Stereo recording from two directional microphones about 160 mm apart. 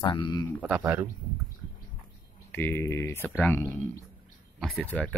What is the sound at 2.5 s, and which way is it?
Speech, 15° left (ahead or behind).